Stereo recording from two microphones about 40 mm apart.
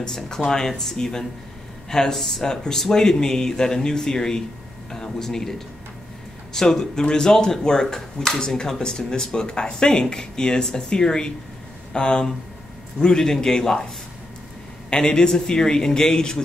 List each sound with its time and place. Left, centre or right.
0.0 s speech: centre
14.9 s speech: centre